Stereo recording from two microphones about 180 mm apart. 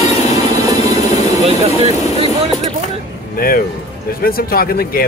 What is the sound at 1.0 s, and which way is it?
Vehicle, 40° left (ahead or behind).